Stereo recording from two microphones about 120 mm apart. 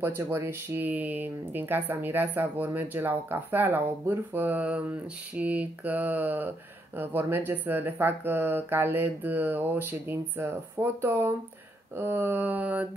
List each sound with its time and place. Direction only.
0.0 s speech: 20° right (ahead or behind)